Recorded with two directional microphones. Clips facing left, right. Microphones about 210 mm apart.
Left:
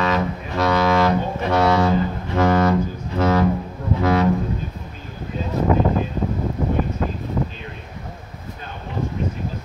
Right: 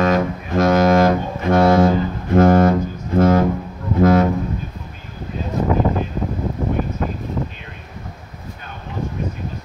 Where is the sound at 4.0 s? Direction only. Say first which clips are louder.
Right 6 dB; 50° right (ahead or behind).